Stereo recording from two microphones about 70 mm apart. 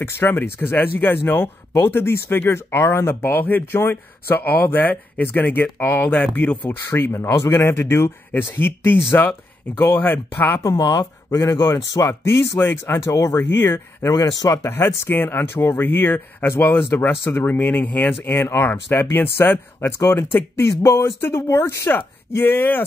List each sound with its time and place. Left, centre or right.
0.0 s speech: left
6.6 s speech: left
10.6 s speech: left
11.3 s speech: left
14.0 s speech: left
15.0 s speech: left